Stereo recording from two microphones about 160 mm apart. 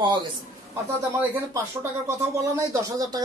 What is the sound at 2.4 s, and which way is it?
Speech, 20° right (ahead or behind).